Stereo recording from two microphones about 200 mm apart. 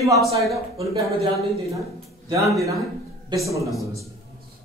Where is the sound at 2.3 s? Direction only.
15° right (ahead or behind).